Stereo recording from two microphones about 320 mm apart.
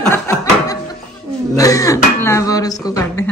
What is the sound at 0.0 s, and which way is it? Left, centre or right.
Chuckle, centre.